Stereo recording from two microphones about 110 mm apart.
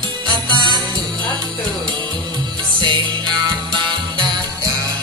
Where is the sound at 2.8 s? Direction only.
45° right (ahead or behind).